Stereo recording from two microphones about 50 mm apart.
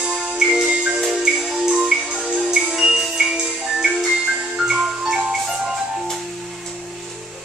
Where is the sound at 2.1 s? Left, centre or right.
Right.